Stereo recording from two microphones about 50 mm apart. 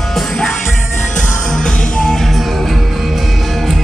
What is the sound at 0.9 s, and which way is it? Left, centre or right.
Music, left.